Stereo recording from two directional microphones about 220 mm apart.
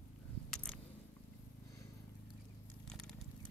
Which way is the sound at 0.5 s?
5° left (ahead or behind).